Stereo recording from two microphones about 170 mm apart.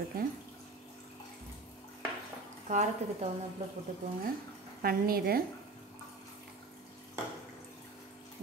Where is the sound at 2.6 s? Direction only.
45° right (ahead or behind).